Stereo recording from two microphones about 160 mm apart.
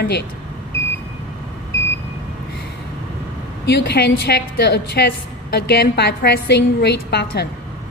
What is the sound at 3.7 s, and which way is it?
A woman's voice, 90° left.